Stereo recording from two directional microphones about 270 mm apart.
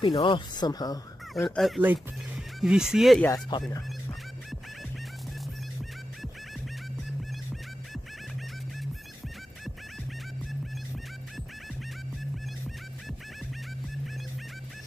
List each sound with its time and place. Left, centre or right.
0.0 s speech: centre
1.3 s speech: centre
3.5 s speech: centre